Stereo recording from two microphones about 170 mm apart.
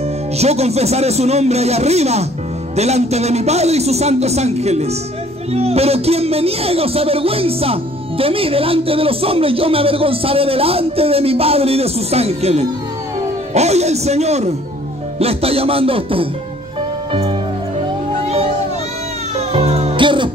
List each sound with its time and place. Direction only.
0.4 s speech: 40° right (ahead or behind)
18.2 s children playing: 35° right (ahead or behind)
19.3 s music: 35° right (ahead or behind)